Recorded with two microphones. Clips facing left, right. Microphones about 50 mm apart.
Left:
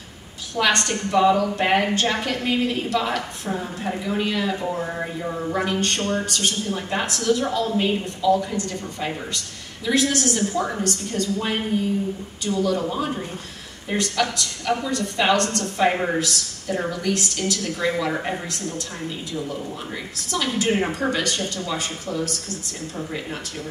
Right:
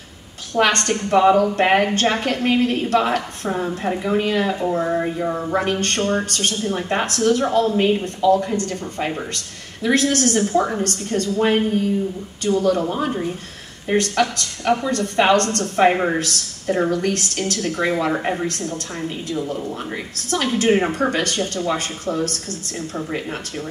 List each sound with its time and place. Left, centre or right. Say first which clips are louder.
0.6 s a woman's voice: right 3 dB; right
5.2 s a woman's voice: right 4 dB; right
13.9 s speech: right 4 dB; right
15.9 s speech: right 4 dB; centre
16.2 s a woman's voice: right 1 dB; right
18.1 s speech: right 4 dB; centre
18.5 s speech: right 3 dB; right
20.2 s speech: right 4 dB; right